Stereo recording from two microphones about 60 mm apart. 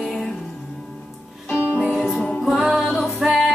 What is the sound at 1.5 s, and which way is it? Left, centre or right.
Music, left.